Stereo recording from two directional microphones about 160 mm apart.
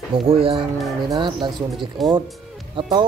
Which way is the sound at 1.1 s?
30° right (ahead or behind).